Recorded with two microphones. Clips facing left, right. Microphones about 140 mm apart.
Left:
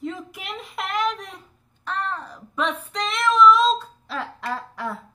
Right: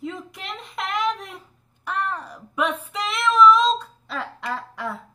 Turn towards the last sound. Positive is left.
turn(degrees=0)  # may be behind; listen again after turning